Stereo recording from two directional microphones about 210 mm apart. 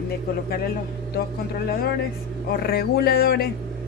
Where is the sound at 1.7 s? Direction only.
45° left (ahead or behind).